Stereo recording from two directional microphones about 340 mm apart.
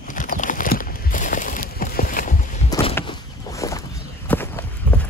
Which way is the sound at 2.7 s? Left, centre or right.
Centre.